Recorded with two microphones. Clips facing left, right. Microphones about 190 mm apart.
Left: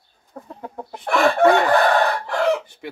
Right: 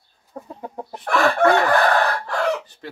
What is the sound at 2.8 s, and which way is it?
Speech, 15° left (ahead or behind).